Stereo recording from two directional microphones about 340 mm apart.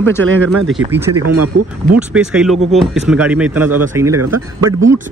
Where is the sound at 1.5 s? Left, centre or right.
Right.